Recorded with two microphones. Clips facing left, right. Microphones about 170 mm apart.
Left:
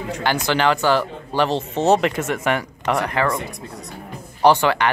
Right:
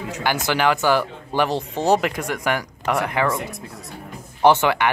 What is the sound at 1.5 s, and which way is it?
Speech, 25° left (ahead or behind).